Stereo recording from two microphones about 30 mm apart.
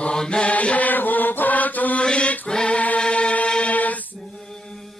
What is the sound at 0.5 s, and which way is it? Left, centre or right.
Mantra, left.